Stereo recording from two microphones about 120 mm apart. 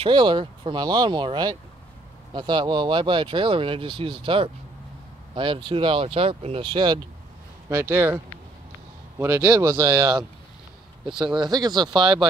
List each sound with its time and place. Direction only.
0.0 s speech: 40° right (ahead or behind)
7.7 s speech: 20° right (ahead or behind)
9.2 s speech: 25° right (ahead or behind)
11.2 s speech: 40° right (ahead or behind)